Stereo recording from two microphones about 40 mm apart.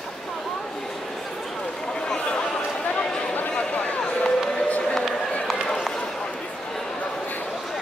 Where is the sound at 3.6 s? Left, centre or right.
Centre.